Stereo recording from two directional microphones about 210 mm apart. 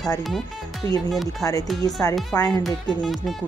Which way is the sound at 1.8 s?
15° left (ahead or behind).